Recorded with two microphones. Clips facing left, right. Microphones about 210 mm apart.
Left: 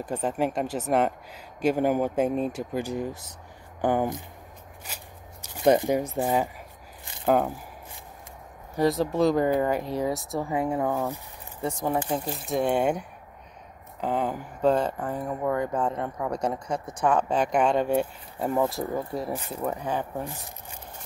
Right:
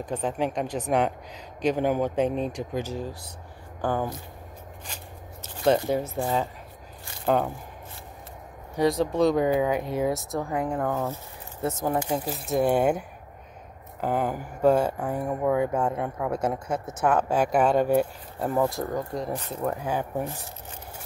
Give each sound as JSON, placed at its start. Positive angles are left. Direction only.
{"t": 0.0, "sound": "speech", "side_deg": 5}
{"t": 8.7, "sound": "speech", "side_deg": 0}
{"t": 12.0, "sound": "speech", "side_deg": -5}
{"t": 14.0, "sound": "speech", "side_deg": -5}
{"t": 20.2, "sound": "speech", "side_deg": 15}